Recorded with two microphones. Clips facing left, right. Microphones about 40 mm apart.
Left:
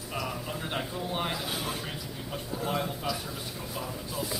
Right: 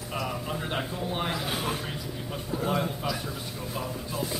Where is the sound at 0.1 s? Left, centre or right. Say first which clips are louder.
Right 2 dB; centre.